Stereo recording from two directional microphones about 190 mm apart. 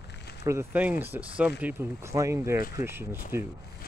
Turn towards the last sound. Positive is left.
turn(degrees=-10)  # may be behind; listen again after turning